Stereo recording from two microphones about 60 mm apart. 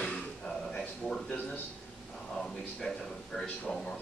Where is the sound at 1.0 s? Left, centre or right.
Centre.